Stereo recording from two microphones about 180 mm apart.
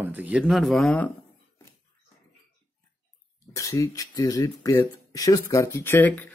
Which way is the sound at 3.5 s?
20° left (ahead or behind).